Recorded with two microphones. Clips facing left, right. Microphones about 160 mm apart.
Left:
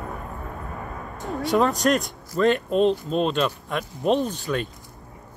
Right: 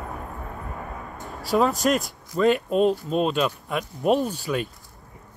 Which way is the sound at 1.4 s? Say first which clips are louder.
Even; centre (ahead or behind).